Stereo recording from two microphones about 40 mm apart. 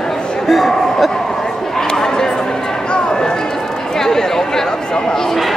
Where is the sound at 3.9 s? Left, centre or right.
Centre.